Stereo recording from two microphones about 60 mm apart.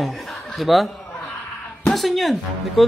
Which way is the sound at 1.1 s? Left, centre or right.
Left.